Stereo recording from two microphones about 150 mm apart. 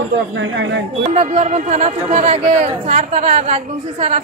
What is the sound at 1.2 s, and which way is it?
Speech, 45° right (ahead or behind).